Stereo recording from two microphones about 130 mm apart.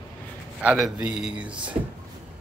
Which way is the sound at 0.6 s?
10° right (ahead or behind).